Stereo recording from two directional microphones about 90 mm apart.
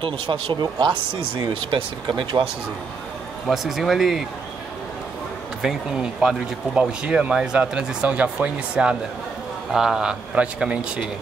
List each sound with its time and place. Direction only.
0.0 s speech: 65° right (ahead or behind)
3.4 s speech: centre (ahead or behind)
5.6 s speech: 5° right (ahead or behind)